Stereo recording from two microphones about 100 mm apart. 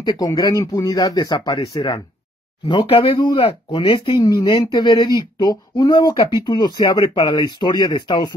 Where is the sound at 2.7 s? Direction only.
65° left (ahead or behind).